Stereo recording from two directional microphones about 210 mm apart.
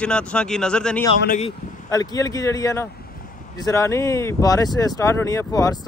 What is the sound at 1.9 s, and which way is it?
Speech, 15° left (ahead or behind).